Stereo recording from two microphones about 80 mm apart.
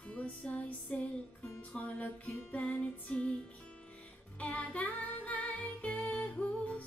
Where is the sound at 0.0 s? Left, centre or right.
Centre.